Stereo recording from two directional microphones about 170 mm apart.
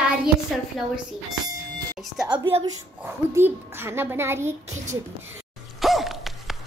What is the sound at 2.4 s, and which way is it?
Speech, 30° right (ahead or behind).